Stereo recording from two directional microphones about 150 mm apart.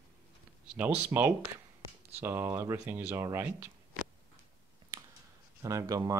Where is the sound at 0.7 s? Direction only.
15° right (ahead or behind).